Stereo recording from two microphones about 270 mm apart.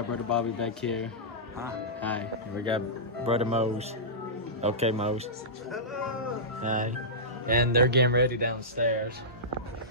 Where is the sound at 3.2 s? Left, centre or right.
Right.